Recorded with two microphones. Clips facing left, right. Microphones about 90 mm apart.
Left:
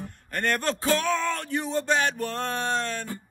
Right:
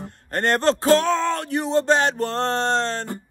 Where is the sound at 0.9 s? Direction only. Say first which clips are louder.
Right 6 dB; 20° right (ahead or behind).